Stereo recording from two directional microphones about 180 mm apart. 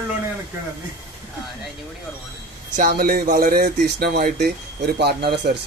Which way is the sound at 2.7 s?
50° right (ahead or behind).